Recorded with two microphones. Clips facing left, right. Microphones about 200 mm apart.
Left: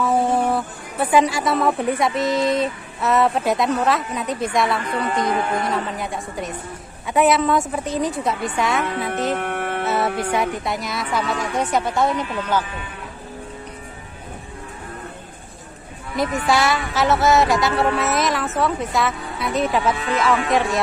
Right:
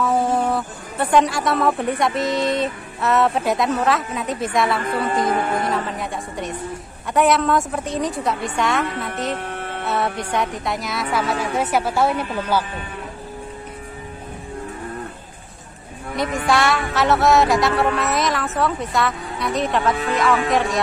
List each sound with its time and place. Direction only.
0.0 s a woman's voice: centre (ahead or behind)
9.4 s music: 65° left (ahead or behind)
9.8 s a woman's voice: centre (ahead or behind)
16.2 s a woman's voice: centre (ahead or behind)